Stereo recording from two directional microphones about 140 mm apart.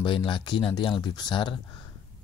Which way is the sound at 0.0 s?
35° left (ahead or behind).